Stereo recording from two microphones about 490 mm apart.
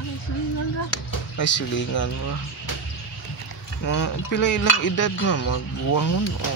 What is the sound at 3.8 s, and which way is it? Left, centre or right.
Speech, left.